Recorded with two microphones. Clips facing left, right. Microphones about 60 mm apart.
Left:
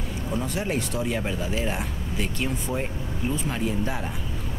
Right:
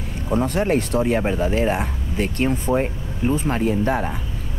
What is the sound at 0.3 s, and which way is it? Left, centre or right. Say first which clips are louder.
Speech: right 9 dB; right.